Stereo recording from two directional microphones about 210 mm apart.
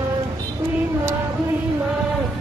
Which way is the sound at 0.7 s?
10° right (ahead or behind).